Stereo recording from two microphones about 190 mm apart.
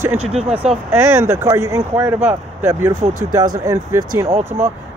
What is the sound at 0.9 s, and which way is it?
Speech, 15° right (ahead or behind).